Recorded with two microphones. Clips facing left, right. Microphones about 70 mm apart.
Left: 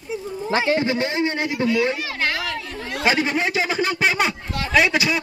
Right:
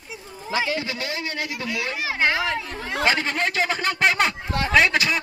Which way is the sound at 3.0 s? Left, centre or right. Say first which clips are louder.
Left 3 dB; centre.